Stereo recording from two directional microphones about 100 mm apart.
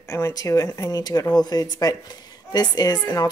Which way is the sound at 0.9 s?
40° left (ahead or behind).